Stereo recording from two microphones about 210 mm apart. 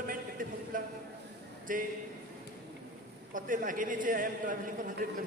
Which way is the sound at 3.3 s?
40° right (ahead or behind).